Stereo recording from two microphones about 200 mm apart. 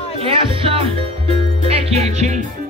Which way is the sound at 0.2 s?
25° right (ahead or behind).